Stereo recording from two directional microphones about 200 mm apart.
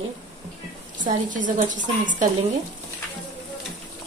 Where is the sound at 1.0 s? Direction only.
40° right (ahead or behind).